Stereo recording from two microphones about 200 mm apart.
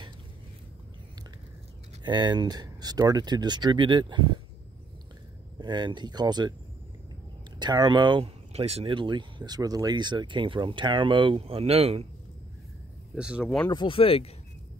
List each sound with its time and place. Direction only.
2.0 s speech: 20° right (ahead or behind)
5.6 s speech: 20° right (ahead or behind)
7.5 s speech: 20° right (ahead or behind)
13.1 s speech: 5° right (ahead or behind)
13.7 s speech: 25° left (ahead or behind)